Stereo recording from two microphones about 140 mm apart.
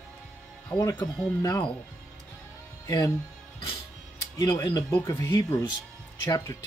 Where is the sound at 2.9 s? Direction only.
25° left (ahead or behind).